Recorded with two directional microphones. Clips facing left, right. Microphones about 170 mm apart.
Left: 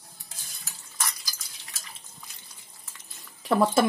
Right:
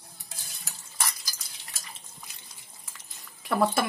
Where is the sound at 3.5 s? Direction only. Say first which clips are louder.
Left 4 dB; 25° left (ahead or behind).